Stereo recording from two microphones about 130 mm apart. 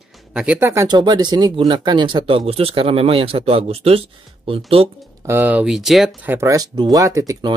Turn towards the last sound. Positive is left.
turn(degrees=-30)  # may be behind; listen again after turning